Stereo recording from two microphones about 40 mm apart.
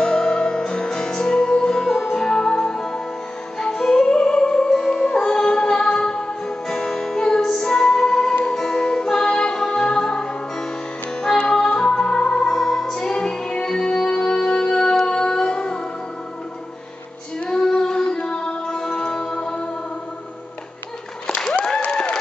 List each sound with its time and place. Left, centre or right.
0.0 s music: centre
2.1 s music: left
17.5 s female singing: centre
18.1 s music: left
21.9 s applause: centre